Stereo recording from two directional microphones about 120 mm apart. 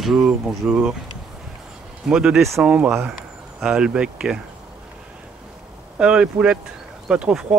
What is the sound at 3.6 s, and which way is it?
Speech, 5° right (ahead or behind).